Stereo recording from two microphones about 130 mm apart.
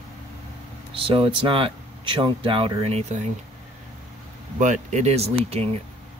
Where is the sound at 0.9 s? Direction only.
45° right (ahead or behind); by 3.3 s 60° right (ahead or behind).